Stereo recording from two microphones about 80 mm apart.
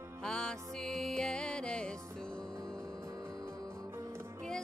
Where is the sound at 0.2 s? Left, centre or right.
Centre.